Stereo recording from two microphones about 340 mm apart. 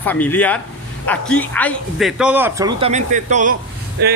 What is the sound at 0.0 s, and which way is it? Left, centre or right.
Speech, centre.